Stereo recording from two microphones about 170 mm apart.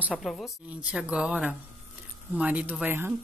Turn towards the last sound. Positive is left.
turn(degrees=-10)  # may be behind; listen again after turning